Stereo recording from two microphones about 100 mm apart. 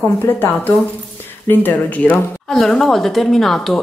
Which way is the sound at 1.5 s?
20° left (ahead or behind).